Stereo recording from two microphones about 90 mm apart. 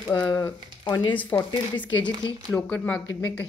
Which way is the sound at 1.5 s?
60° left (ahead or behind).